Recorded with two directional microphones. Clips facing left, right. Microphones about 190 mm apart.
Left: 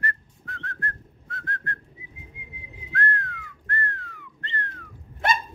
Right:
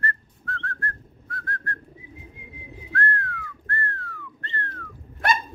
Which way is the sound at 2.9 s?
20° left (ahead or behind).